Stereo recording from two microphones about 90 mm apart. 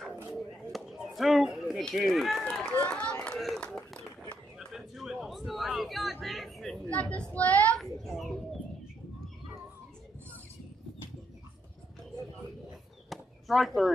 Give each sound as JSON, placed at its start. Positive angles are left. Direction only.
{"t": 0.0, "sound": "a sound", "side_deg": 0}
{"t": 2.0, "sound": "speech", "side_deg": 0}
{"t": 2.6, "sound": "run", "side_deg": 15}
{"t": 4.6, "sound": "a sound", "side_deg": -5}
{"t": 6.9, "sound": "a woman's voice", "side_deg": 15}
{"t": 7.8, "sound": "a child's voice", "side_deg": 0}
{"t": 13.1, "sound": "chop", "side_deg": 0}